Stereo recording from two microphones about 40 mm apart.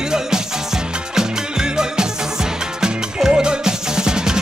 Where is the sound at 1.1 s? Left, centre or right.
Centre.